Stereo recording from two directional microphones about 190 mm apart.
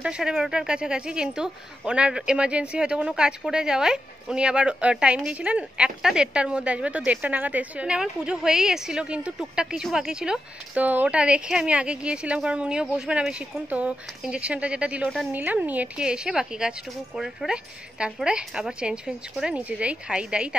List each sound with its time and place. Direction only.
0.0 s speech: 5° right (ahead or behind)